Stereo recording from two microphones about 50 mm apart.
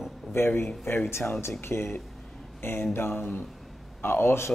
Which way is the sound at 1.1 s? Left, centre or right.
Left.